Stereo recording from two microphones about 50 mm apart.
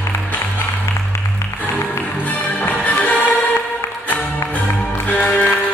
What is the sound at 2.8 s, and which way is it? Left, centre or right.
Music, left.